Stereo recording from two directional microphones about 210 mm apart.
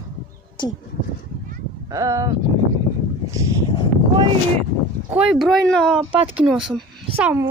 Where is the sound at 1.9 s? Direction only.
15° right (ahead or behind).